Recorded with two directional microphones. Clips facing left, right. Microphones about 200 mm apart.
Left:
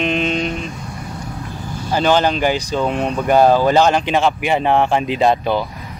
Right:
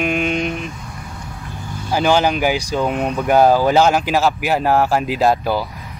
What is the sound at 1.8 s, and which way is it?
Speech, 10° right (ahead or behind).